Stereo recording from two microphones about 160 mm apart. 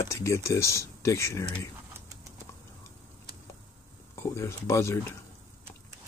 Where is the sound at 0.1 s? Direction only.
20° left (ahead or behind).